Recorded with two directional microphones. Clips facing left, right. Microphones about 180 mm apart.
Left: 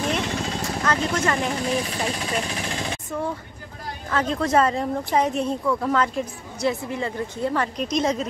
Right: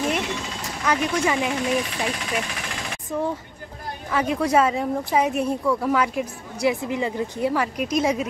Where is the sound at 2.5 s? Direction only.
25° left (ahead or behind).